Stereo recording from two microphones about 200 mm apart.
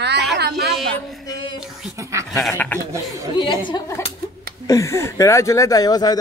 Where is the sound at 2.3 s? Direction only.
5° left (ahead or behind).